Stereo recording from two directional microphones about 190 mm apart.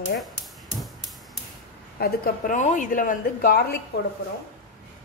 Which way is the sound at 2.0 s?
40° left (ahead or behind).